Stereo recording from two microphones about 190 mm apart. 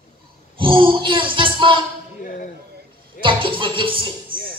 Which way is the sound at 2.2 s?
45° left (ahead or behind).